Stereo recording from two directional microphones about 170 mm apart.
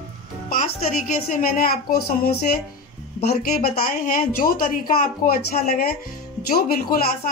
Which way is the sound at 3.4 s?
55° left (ahead or behind).